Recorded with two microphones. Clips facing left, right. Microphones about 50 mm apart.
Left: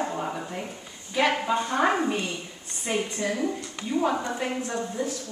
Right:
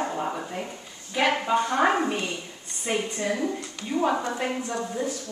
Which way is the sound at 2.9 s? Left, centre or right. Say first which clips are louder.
Right 1 dB; right.